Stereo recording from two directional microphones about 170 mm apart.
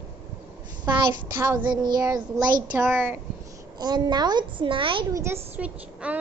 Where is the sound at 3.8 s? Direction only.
25° right (ahead or behind).